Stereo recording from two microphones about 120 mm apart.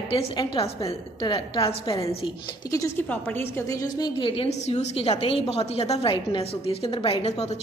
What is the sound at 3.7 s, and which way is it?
Speech, 35° left (ahead or behind).